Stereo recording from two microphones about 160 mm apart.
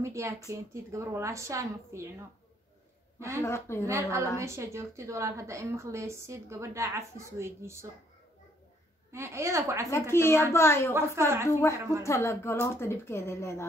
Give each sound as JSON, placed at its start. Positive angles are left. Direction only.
{"t": 0.0, "sound": "speech", "side_deg": -20}
{"t": 3.2, "sound": "speech", "side_deg": -15}
{"t": 3.4, "sound": "speech", "side_deg": 15}
{"t": 3.8, "sound": "a woman's voice", "side_deg": -20}
{"t": 9.1, "sound": "a woman's voice", "side_deg": -15}
{"t": 10.1, "sound": "speech", "side_deg": 15}
{"t": 11.0, "sound": "a woman's voice", "side_deg": -15}
{"t": 12.0, "sound": "speech", "side_deg": 20}